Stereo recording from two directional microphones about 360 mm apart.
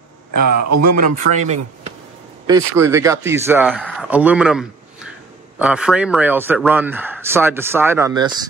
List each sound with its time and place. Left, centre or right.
0.6 s speech: right
1.1 s speech: centre
2.4 s a man's voice: centre